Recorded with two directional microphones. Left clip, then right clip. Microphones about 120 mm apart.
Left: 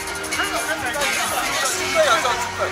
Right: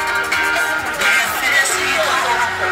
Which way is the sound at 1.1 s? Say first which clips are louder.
Right 7 dB; 20° right (ahead or behind).